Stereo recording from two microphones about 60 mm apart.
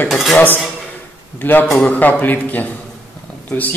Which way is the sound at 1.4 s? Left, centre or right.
Left.